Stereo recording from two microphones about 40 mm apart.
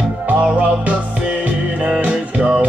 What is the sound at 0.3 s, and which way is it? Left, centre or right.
Music, right.